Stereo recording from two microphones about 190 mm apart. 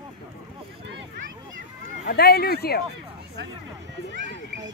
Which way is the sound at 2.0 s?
55° left (ahead or behind).